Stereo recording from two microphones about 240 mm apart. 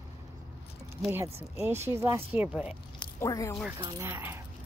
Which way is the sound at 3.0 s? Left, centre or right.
Centre.